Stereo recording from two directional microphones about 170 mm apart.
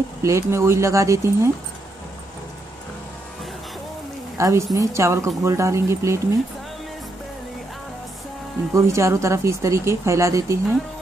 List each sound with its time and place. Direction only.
0.2 s speech: 15° right (ahead or behind)
4.4 s speech: 15° right (ahead or behind)
8.7 s speech: 15° right (ahead or behind)